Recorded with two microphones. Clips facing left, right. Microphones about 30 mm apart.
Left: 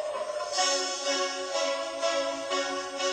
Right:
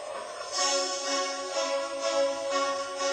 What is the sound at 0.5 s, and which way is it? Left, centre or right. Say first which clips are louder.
Music: right 1 dB; left.